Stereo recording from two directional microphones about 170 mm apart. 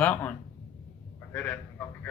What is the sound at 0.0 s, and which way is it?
Speech, 10° left (ahead or behind).